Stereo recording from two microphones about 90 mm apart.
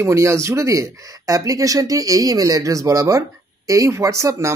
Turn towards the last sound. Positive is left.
turn(degrees=-35)  # may be behind; listen again after turning